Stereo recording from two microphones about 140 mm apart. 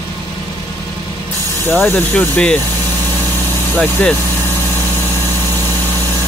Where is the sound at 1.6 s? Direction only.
15° left (ahead or behind).